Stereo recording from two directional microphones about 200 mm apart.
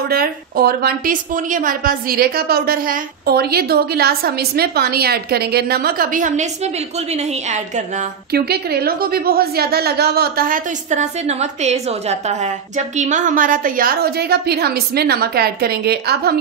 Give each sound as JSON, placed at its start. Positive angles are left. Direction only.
{"t": 0.1, "sound": "a woman's voice", "side_deg": -50}
{"t": 8.3, "sound": "a woman's voice", "side_deg": -50}